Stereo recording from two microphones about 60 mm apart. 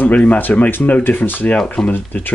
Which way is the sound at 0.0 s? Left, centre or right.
Left.